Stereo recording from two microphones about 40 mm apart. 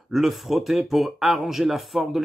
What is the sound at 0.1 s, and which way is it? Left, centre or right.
Speech, centre.